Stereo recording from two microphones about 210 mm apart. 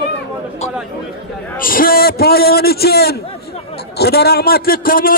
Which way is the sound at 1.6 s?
45° left (ahead or behind).